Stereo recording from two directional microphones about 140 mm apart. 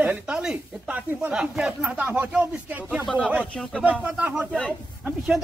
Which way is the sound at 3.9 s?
10° right (ahead or behind).